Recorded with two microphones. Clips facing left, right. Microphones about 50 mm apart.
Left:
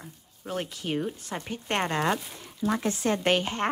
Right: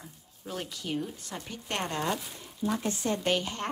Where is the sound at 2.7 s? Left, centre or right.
Left.